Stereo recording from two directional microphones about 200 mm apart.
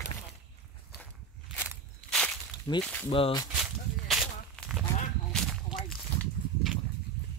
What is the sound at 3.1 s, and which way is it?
Speech, 25° left (ahead or behind).